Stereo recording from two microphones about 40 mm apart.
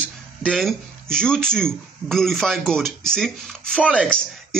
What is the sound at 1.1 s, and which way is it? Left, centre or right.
Speech, centre.